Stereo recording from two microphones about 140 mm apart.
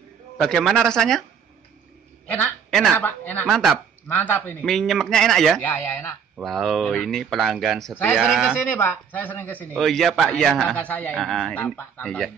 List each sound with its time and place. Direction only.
0.4 s speech: 5° left (ahead or behind)
2.2 s a sound: 10° left (ahead or behind)
3.0 s speech: 15° left (ahead or behind)
3.4 s speech: centre (ahead or behind)
4.1 s speech: 15° left (ahead or behind)
4.6 s speech: centre (ahead or behind)
5.6 s speech: 15° left (ahead or behind)
6.3 s speech: centre (ahead or behind)
8.6 s speech: 15° left (ahead or behind)
9.8 s speech: centre (ahead or behind)
11.2 s speech: centre (ahead or behind)
11.5 s speech: 10° left (ahead or behind)